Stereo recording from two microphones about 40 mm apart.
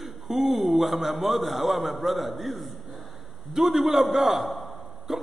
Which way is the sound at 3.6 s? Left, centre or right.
Centre.